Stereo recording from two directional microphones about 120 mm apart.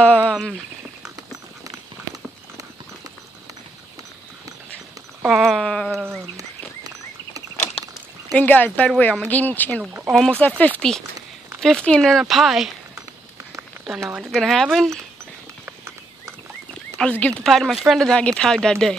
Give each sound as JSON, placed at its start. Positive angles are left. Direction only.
{"t": 0.0, "sound": "a sound", "side_deg": 10}
{"t": 5.2, "sound": "a sound", "side_deg": 0}
{"t": 5.9, "sound": "sheep", "side_deg": -20}
{"t": 8.4, "sound": "a woman's voice", "side_deg": 15}
{"t": 9.3, "sound": "a woman's voice", "side_deg": 15}
{"t": 9.8, "sound": "speech", "side_deg": -15}
{"t": 10.6, "sound": "a woman's voice", "side_deg": 10}
{"t": 14.0, "sound": "speech", "side_deg": -5}
{"t": 17.0, "sound": "speech", "side_deg": 10}